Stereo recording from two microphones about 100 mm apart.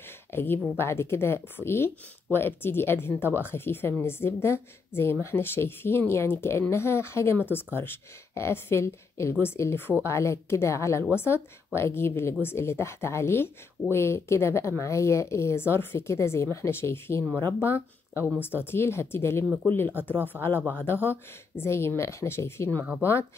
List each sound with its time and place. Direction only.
0.3 s a woman's voice: 25° left (ahead or behind)
19.9 s speech: 15° right (ahead or behind)
20.3 s a woman's voice: 20° left (ahead or behind)